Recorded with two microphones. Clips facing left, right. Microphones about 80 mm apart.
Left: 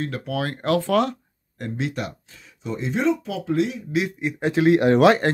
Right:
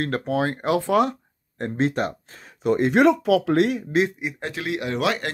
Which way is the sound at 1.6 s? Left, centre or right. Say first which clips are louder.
Right 5 dB; right.